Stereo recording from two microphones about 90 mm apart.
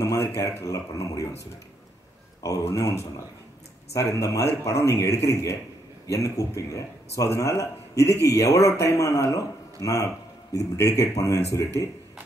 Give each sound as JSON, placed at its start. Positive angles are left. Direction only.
{"t": 0.0, "sound": "speech", "side_deg": 35}
{"t": 2.4, "sound": "speech", "side_deg": 35}